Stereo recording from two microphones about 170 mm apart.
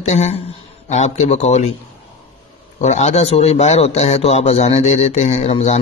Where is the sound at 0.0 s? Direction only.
40° left (ahead or behind).